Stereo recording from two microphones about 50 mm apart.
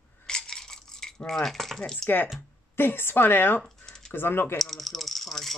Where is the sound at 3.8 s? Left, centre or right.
Centre.